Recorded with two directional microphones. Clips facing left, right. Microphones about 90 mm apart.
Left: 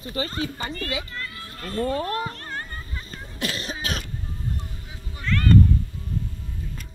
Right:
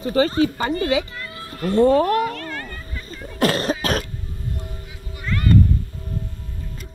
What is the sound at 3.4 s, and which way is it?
Cough, 50° right (ahead or behind).